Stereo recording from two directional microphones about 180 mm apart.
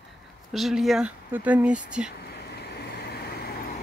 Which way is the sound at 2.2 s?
65° left (ahead or behind).